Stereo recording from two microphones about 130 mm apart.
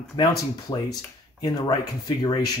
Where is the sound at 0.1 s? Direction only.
30° left (ahead or behind).